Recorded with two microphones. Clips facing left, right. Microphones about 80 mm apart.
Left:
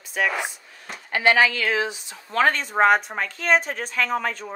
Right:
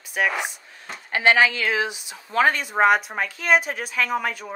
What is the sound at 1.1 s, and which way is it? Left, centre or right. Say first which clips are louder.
Speech: even; right.